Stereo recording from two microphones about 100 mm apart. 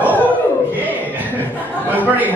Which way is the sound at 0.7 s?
15° right (ahead or behind).